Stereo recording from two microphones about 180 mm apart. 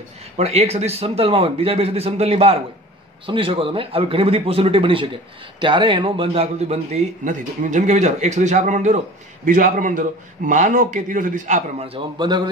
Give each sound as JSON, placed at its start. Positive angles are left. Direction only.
{"t": 0.4, "sound": "a man's voice", "side_deg": -35}